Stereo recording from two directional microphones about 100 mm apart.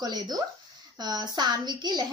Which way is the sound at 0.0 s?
40° right (ahead or behind).